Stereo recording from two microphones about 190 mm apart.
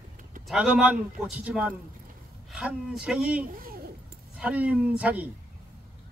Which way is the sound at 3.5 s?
50° right (ahead or behind).